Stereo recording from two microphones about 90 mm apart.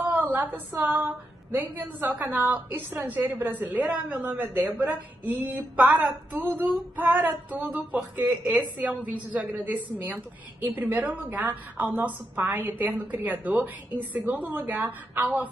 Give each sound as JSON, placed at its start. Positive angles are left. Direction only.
{"t": 0.0, "sound": "a woman's voice", "side_deg": -20}